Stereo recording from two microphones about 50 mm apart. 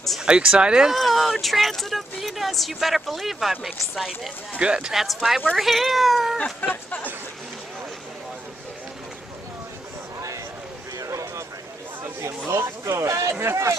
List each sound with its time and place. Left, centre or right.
0.2 s speech: centre
0.8 s a sound: centre
1.4 s speech: centre
4.6 s speech: centre
4.9 s speech: centre
6.3 s a sound: centre
6.7 s speech: left
11.1 s a sound: right
12.0 s speech: right